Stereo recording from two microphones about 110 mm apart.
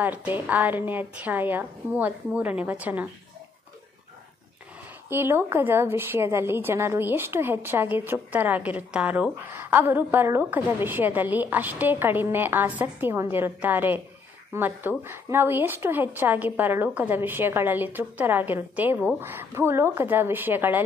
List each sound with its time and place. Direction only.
0.0 s a woman's voice: 15° right (ahead or behind)
5.1 s a woman's voice: 20° right (ahead or behind)